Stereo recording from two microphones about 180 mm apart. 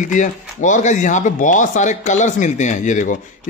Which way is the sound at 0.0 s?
45° left (ahead or behind).